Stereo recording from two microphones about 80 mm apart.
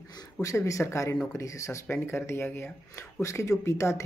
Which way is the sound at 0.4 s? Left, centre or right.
Left.